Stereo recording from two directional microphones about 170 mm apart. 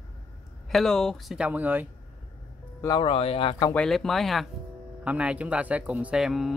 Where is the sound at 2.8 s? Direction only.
25° left (ahead or behind).